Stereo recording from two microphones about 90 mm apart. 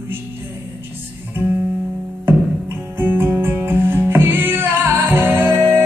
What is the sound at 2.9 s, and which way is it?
Music, 20° right (ahead or behind).